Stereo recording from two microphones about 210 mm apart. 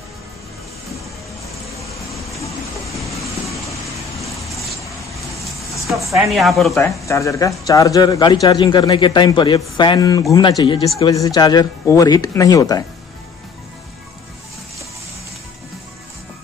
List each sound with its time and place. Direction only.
4.2 s vehicle: centre (ahead or behind)
5.9 s speech: centre (ahead or behind)
6.7 s speech: 15° left (ahead or behind)